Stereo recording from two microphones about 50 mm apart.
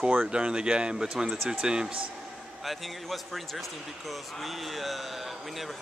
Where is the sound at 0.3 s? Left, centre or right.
Centre.